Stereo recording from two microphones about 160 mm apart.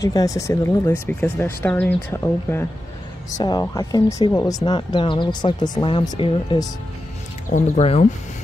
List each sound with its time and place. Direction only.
0.0 s speech: 20° left (ahead or behind)
7.4 s speech: 45° left (ahead or behind)